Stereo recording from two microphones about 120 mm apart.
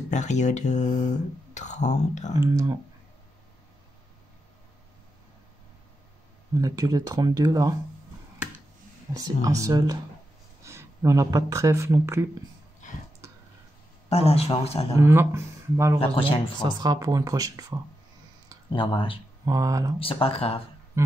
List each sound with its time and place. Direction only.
0.1 s speech: 80° left
2.3 s speech: 25° right (ahead or behind)
6.6 s speech: 30° right (ahead or behind)
9.1 s speech: 30° right (ahead or behind)
14.0 s a man's voice: 60° left (ahead or behind)
15.0 s speech: 20° right (ahead or behind)
16.0 s speech: 50° left (ahead or behind)
16.8 s speech: 30° right (ahead or behind)
18.7 s speech: 45° left (ahead or behind)
19.4 s speech: 30° right (ahead or behind)
20.0 s speech: 50° left (ahead or behind)